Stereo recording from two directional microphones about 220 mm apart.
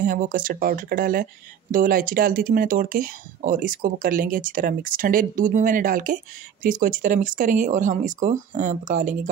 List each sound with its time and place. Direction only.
0.0 s speech: 40° right (ahead or behind)